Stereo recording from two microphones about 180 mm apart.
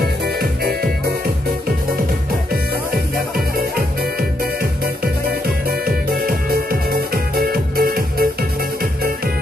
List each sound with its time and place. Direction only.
0.4 s music: 60° right (ahead or behind)
5.7 s music: 55° right (ahead or behind)